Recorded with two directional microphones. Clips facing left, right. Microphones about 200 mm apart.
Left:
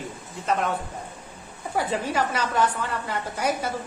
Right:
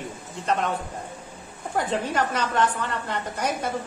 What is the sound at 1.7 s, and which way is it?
A woman's voice, 10° left (ahead or behind).